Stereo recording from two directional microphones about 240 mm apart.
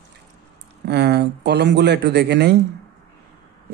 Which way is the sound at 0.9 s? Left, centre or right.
Right.